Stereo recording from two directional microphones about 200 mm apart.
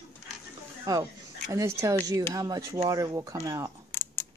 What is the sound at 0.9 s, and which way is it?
Speech, 20° right (ahead or behind).